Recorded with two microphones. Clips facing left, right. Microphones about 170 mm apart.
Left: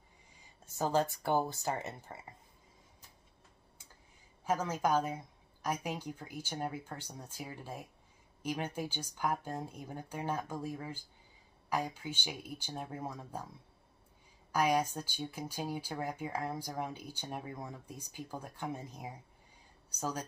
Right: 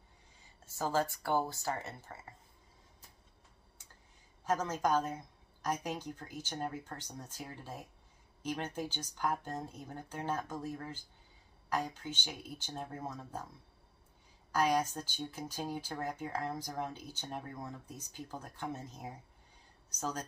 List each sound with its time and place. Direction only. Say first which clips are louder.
0.7 s speech: left 2 dB; 20° left (ahead or behind)
4.5 s speech: even; 10° left (ahead or behind)
14.5 s speech: even; 10° left (ahead or behind)